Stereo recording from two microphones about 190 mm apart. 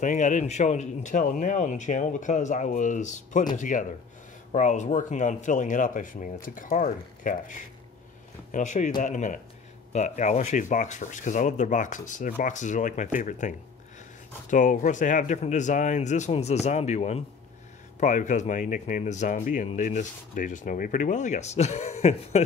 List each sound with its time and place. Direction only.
0.0 s speech: 40° left (ahead or behind)